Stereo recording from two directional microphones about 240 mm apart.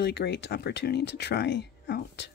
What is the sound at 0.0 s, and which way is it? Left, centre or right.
Speech, left.